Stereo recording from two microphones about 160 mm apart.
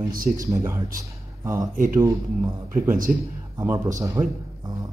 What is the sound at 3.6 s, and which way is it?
Speech, 20° right (ahead or behind).